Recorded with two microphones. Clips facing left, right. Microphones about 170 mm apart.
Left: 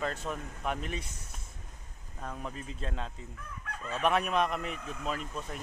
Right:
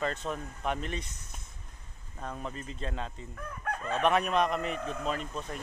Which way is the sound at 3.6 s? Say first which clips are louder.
Right 5 dB; 55° right (ahead or behind).